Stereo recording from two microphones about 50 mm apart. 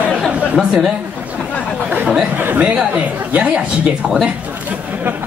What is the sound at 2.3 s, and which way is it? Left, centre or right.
Speech, right.